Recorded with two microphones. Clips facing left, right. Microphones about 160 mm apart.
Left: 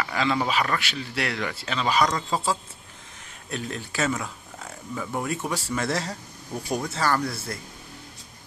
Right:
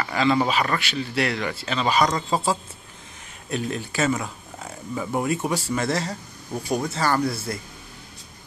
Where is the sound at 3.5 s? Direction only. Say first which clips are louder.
Right 5 dB; 5° right (ahead or behind).